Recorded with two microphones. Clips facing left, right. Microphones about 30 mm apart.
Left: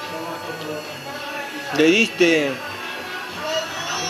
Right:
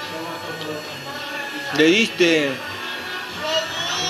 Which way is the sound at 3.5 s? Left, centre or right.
Right.